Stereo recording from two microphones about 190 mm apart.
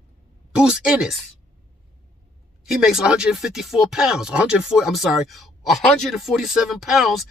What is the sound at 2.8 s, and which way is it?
Speech, 5° right (ahead or behind).